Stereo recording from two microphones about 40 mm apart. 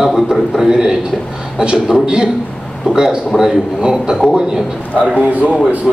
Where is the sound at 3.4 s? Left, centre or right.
Centre.